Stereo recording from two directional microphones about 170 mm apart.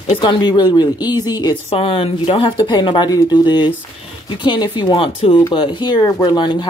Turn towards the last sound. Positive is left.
turn(degrees=25)  # may be behind; listen again after turning